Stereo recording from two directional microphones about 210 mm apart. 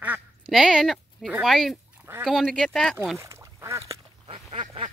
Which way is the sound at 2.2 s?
Centre (ahead or behind).